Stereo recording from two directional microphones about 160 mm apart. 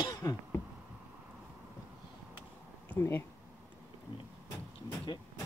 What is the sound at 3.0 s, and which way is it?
Speech, 15° left (ahead or behind).